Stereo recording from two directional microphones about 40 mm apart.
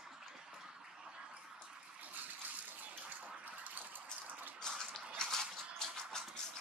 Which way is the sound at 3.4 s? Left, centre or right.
Right.